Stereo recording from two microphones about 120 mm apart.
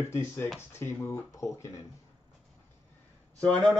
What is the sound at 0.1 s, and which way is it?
A man's voice, 20° left (ahead or behind).